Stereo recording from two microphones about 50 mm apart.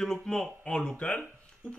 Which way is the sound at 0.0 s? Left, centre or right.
Centre.